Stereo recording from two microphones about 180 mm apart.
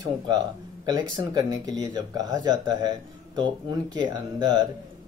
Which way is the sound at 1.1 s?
20° right (ahead or behind).